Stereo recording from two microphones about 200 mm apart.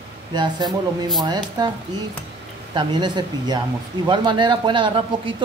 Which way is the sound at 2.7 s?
20° right (ahead or behind).